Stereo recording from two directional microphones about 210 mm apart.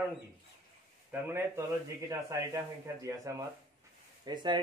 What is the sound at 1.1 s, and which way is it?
Speech, 10° right (ahead or behind).